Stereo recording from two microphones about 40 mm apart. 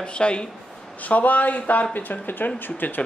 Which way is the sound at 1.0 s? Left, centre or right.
Left.